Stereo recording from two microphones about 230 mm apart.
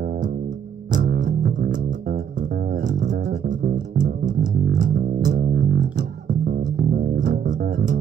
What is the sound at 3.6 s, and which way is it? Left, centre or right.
Bass guitar, right.